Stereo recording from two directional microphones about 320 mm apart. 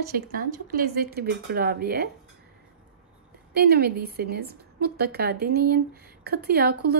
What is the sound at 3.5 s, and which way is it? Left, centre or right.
A woman's voice, right.